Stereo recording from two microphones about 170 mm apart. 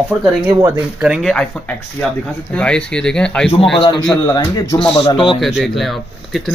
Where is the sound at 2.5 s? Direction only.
5° left (ahead or behind).